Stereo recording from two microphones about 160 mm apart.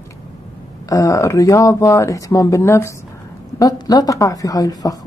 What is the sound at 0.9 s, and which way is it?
Speech, 20° left (ahead or behind).